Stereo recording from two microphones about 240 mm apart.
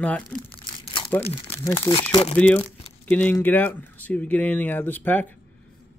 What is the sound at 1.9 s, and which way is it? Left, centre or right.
Speech, left.